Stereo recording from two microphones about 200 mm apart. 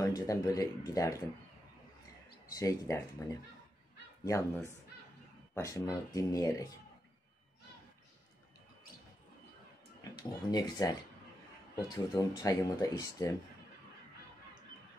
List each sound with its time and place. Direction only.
0.0 s speech: 20° left (ahead or behind)
2.5 s speech: 15° left (ahead or behind)
10.1 s speech: 20° left (ahead or behind)